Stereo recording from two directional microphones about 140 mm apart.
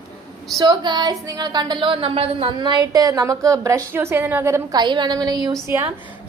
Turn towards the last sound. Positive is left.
turn(degrees=-15)  # may be behind; listen again after turning